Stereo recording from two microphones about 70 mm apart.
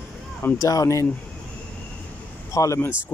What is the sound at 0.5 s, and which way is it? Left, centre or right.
Speech, left.